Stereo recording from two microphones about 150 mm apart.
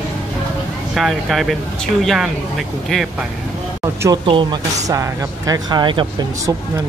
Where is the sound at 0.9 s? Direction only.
Centre (ahead or behind).